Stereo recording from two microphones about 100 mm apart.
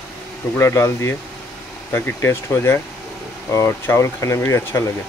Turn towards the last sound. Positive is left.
turn(degrees=30)  # may be behind; listen again after turning